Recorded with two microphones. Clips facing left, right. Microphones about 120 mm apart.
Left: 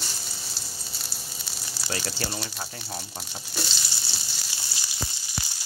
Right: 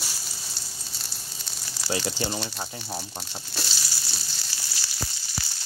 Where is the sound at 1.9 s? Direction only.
15° right (ahead or behind).